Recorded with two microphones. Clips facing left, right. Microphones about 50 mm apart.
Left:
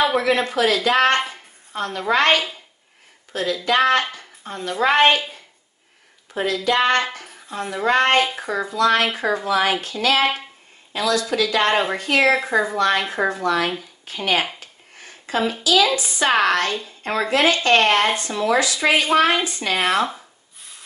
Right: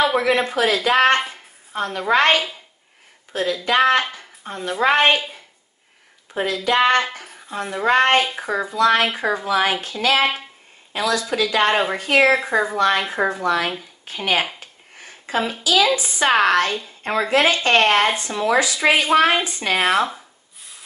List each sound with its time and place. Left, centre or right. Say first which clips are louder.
0.2 s a woman's voice: even; centre
2.3 s speech: even; centre
3.6 s speech: right 1 dB; centre
6.3 s speech: right 1 dB; centre
7.2 s a woman's voice: right 1 dB; centre; by 9.9 s right
10.2 s speech: even; centre
10.9 s a woman's voice: even; centre
12.4 s a woman's voice: even; centre
14.0 s a woman's voice: even; right; by 20.2 s centre